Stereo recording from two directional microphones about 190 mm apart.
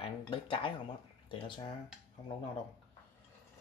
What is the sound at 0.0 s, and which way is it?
Speech, 30° left (ahead or behind).